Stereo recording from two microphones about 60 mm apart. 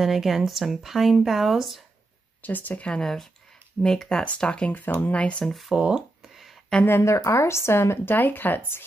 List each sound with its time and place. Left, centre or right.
0.0 s speech: centre
2.4 s speech: left
3.8 s speech: centre
4.7 s speech: left
5.4 s speech: centre
5.8 s speech: centre
6.2 s a sound: centre
6.9 s speech: left